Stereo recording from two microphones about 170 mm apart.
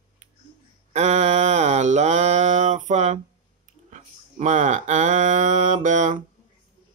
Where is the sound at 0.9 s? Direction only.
40° right (ahead or behind).